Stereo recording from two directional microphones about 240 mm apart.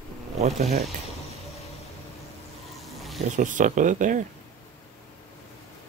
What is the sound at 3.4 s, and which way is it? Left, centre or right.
Speech, right.